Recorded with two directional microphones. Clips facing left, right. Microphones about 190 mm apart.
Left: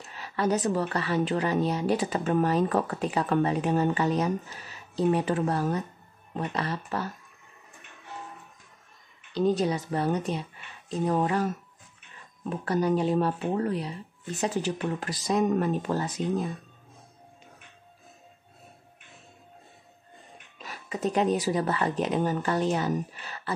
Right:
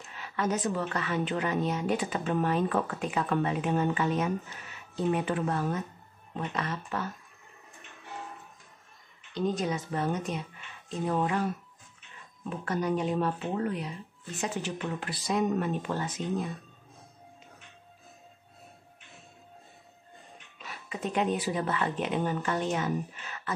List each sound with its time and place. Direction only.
0.0 s a woman's voice: 40° left (ahead or behind)
9.3 s a woman's voice: 35° left (ahead or behind)
20.5 s a woman's voice: 40° left (ahead or behind)